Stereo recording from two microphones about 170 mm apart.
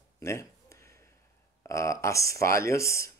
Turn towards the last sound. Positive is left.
turn(degrees=15)  # may be behind; listen again after turning